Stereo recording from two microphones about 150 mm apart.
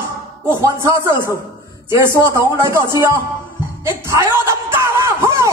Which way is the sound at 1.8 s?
20° right (ahead or behind).